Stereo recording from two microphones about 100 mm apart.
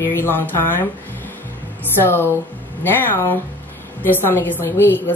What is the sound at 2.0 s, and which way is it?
A woman's voice, 25° left (ahead or behind).